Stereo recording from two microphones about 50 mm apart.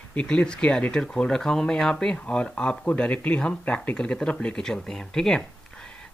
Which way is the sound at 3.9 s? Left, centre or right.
Centre.